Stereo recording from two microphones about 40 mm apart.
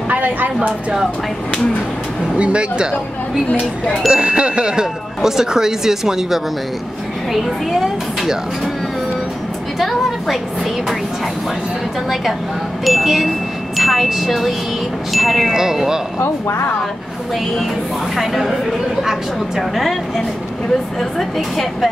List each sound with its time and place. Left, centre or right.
0.1 s a woman's voice: right
2.3 s speech: right
4.1 s speech: right
5.2 s speech: centre
9.8 s a woman's voice: centre
12.8 s a woman's voice: centre
15.5 s speech: centre
18.1 s a woman's voice: centre
19.7 s a woman's voice: centre
21.0 s a woman's voice: centre